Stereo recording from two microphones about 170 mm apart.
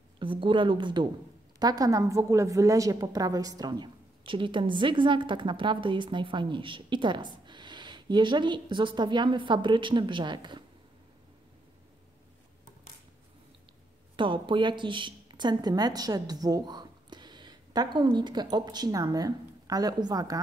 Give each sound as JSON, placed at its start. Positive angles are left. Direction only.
{"t": 0.2, "sound": "a woman's voice", "side_deg": -30}
{"t": 14.1, "sound": "a woman's voice", "side_deg": -30}